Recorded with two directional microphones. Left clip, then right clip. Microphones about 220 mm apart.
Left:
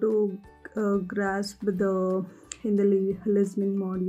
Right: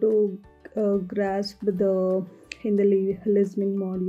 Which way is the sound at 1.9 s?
15° left (ahead or behind).